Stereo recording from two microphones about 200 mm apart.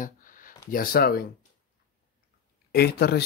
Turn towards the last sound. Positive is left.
turn(degrees=50)  # may be behind; listen again after turning